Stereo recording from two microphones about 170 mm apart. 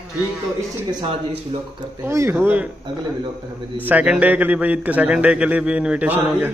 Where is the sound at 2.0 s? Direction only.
15° right (ahead or behind).